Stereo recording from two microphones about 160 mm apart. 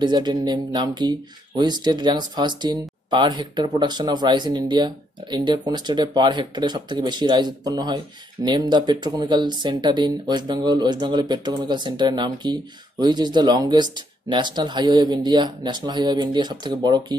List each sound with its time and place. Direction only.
0.0 s speech: 30° right (ahead or behind)